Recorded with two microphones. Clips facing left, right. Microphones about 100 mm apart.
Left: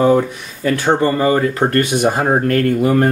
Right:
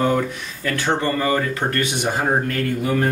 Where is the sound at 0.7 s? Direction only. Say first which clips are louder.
Left 5 dB; 40° left (ahead or behind).